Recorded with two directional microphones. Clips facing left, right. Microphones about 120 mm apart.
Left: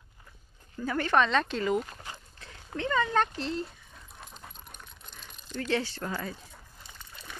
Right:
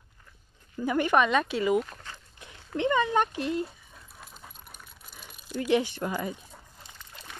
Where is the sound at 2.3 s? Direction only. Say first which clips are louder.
Right 6 dB; 20° right (ahead or behind).